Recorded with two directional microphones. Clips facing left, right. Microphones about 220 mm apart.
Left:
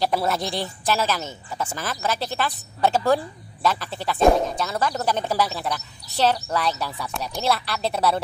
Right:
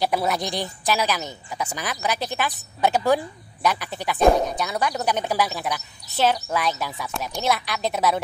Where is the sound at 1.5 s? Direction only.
15° right (ahead or behind).